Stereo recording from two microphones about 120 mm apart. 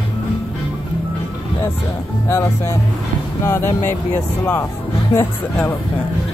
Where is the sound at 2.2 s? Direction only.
20° left (ahead or behind).